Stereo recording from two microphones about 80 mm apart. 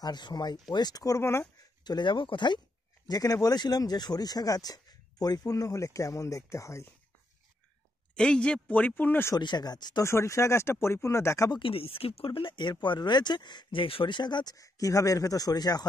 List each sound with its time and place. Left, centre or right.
0.0 s speech: left
1.2 s speech: left
1.9 s speech: left
3.1 s speech: left
8.1 s speech: centre
9.4 s speech: left
10.0 s speech: left
12.3 s speech: left